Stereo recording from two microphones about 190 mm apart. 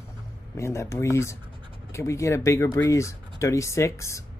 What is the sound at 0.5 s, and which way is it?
Speech, 15° left (ahead or behind).